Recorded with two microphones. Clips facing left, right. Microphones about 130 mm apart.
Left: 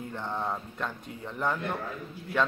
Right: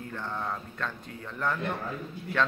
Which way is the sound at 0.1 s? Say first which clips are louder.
Left 2 dB; 15° left (ahead or behind).